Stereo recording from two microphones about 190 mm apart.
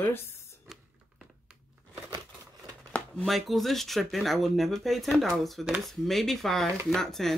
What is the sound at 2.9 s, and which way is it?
Speech, 5° left (ahead or behind).